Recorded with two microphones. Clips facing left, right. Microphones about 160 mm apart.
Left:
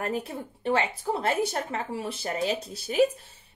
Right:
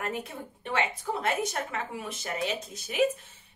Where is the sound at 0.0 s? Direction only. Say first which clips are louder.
Left 4 dB; 35° left (ahead or behind).